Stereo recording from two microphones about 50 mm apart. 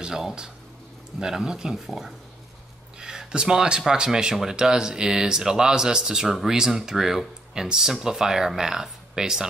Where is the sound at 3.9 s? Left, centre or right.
Centre.